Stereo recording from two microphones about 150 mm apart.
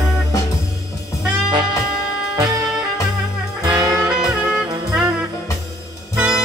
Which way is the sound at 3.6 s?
30° right (ahead or behind).